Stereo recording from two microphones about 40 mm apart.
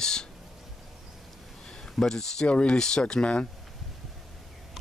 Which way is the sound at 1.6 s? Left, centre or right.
Centre.